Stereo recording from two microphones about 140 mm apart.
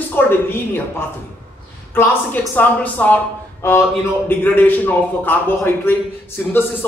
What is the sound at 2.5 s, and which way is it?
A man's voice, 10° left (ahead or behind).